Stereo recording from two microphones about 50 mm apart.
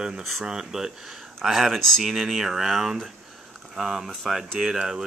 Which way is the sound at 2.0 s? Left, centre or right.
Centre.